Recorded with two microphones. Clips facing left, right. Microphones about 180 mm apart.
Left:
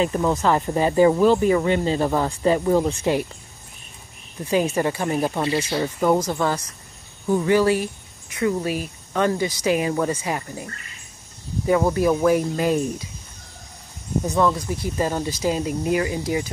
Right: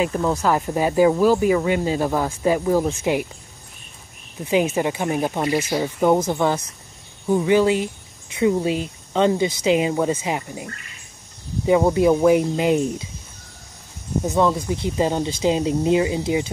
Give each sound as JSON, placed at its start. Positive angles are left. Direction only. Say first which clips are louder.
{"t": 0.0, "sound": "speech", "louder": "even", "side_deg": 0}
{"t": 4.6, "sound": "speech", "louder": "even", "side_deg": -5}
{"t": 6.1, "sound": "speech", "louder": "right 2 dB", "side_deg": -20}
{"t": 14.4, "sound": "speech", "louder": "right 2 dB", "side_deg": -20}